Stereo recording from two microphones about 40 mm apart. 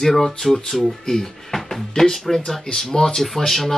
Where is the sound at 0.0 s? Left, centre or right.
Centre.